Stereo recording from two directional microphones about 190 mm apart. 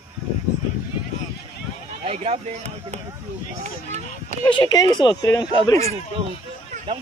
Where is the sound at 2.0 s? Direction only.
35° right (ahead or behind).